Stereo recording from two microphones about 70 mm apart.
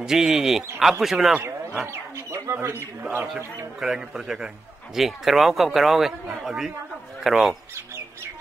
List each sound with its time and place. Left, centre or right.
0.0 s a man's voice: centre
1.9 s chicken: right
3.0 s speech: right
3.8 s a man's voice: centre